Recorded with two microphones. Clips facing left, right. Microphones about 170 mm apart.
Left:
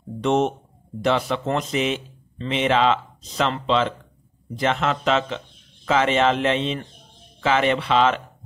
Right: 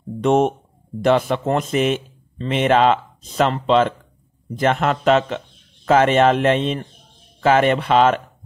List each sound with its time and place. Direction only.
0.2 s speech: 50° right (ahead or behind)